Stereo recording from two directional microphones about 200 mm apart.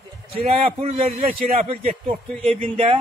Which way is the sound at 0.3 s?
30° right (ahead or behind).